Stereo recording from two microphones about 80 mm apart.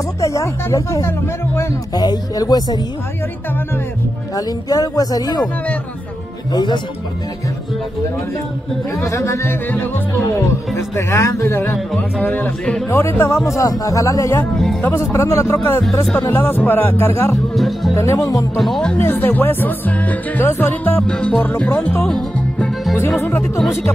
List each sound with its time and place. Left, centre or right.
0.2 s speech: left
2.0 s a woman's voice: left
4.4 s a woman's voice: left
6.5 s a woman's voice: left
8.9 s speech: left
13.5 s speech: left
15.8 s speech: centre
16.3 s speech: left
17.6 s speech: centre
17.9 s speech: left
18.6 s speech: centre
18.9 s speech: left
21.1 s music: centre
22.9 s speech: left